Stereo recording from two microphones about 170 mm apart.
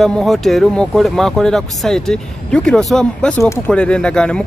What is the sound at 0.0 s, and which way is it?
A man's voice, centre (ahead or behind).